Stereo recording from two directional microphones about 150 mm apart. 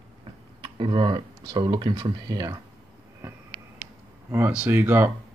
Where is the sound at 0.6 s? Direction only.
35° right (ahead or behind).